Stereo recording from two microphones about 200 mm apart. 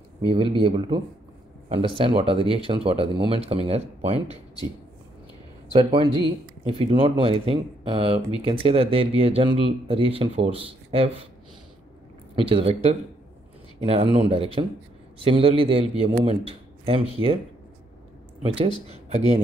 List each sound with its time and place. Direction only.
0.2 s speech: 25° right (ahead or behind)
5.7 s speech: 25° right (ahead or behind)
12.4 s speech: 25° right (ahead or behind)
14.1 s speech: 30° right (ahead or behind)
18.4 s speech: 30° right (ahead or behind)